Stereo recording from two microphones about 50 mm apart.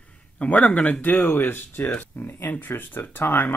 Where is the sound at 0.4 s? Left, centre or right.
Left.